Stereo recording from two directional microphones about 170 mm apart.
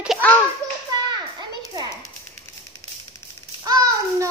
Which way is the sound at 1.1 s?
25° right (ahead or behind).